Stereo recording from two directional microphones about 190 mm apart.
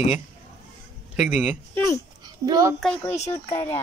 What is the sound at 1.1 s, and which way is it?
Speech, centre (ahead or behind).